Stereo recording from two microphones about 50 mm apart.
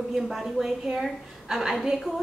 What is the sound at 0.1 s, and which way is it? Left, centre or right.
A woman's voice, centre.